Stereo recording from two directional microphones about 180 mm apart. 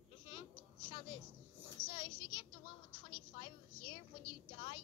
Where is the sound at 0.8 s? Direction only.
30° left (ahead or behind).